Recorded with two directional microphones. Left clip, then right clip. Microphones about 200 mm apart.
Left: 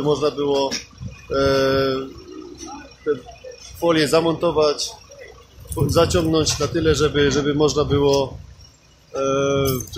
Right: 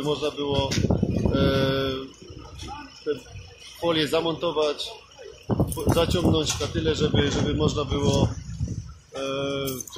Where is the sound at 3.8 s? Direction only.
15° left (ahead or behind).